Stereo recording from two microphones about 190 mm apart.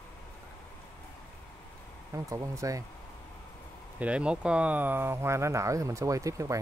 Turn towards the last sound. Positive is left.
turn(degrees=-15)  # may be behind; listen again after turning